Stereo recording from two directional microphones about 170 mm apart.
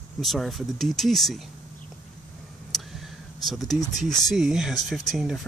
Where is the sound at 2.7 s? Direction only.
Centre (ahead or behind).